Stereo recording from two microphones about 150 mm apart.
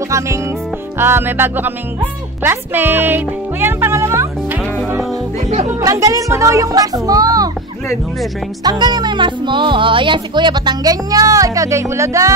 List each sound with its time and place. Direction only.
0.9 s music: 15° right (ahead or behind)
2.4 s speech: 15° right (ahead or behind)
5.5 s music: 45° right (ahead or behind)
5.8 s speech: 20° right (ahead or behind)
8.6 s speech: 25° right (ahead or behind)